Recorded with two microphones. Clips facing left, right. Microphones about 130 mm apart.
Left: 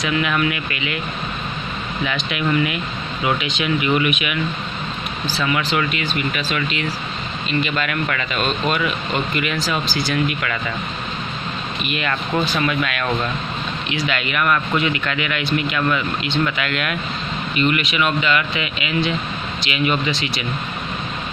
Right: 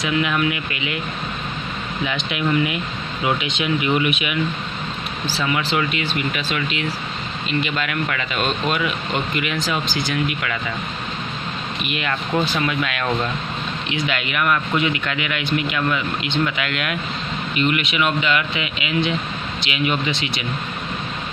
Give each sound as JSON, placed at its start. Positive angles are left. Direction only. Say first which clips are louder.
{"t": 0.0, "sound": "speech", "louder": "even", "side_deg": -20}
{"t": 2.0, "sound": "speech", "louder": "even", "side_deg": -20}
{"t": 5.4, "sound": "speech", "louder": "left 1 dB", "side_deg": -25}
{"t": 11.8, "sound": "speech", "louder": "left 1 dB", "side_deg": -15}